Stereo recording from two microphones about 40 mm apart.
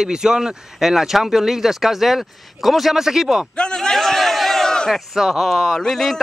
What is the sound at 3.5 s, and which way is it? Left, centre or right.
Speech, left.